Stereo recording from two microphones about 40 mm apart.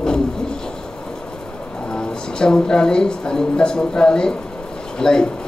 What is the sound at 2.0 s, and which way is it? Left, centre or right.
A woman's voice, centre.